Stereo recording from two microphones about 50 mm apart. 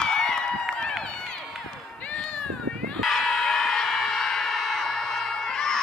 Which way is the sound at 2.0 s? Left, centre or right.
Left.